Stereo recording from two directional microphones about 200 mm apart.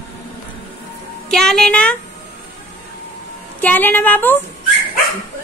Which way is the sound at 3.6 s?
10° left (ahead or behind).